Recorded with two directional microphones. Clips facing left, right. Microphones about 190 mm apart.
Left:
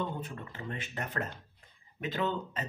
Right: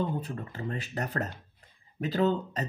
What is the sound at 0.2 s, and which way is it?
Speech, 40° right (ahead or behind).